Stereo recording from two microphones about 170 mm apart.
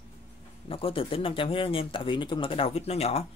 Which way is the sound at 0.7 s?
35° left (ahead or behind).